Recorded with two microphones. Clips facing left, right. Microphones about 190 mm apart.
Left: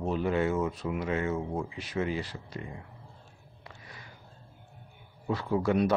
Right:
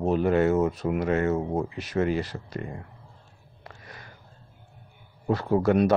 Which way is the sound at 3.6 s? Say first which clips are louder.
Right 4 dB; 50° right (ahead or behind).